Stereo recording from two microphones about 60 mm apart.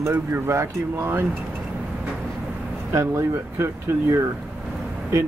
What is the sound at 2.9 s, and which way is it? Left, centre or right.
Speech, right.